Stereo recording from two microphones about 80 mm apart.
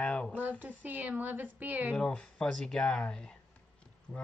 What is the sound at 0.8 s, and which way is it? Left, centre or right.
A woman's voice, right.